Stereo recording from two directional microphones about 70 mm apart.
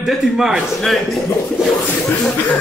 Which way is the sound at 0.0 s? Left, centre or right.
Centre.